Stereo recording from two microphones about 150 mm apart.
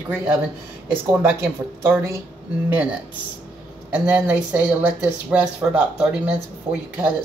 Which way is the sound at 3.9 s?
10° right (ahead or behind).